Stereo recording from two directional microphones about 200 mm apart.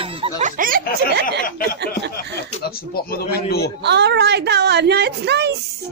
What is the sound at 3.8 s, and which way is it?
A woman's voice, 55° right (ahead or behind).